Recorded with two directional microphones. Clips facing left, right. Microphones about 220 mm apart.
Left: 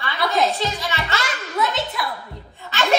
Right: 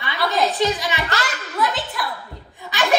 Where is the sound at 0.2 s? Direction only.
Centre (ahead or behind).